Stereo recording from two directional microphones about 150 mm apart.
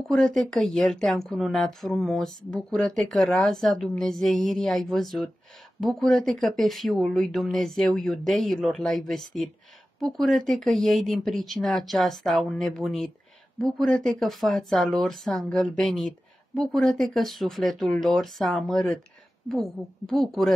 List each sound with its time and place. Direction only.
0.1 s speech: 5° left (ahead or behind)